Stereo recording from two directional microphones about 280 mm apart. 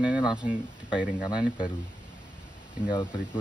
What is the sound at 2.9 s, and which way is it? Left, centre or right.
Speech, centre.